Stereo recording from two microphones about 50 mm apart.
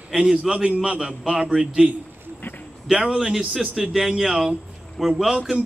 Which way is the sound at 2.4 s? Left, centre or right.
Left.